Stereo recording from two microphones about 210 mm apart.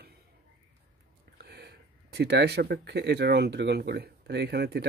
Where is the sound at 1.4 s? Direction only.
50° right (ahead or behind).